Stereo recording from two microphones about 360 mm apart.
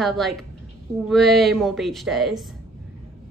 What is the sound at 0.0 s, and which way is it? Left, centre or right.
A woman's voice, centre.